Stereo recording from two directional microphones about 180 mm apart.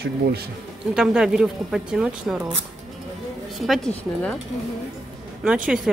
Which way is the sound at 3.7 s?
5° left (ahead or behind).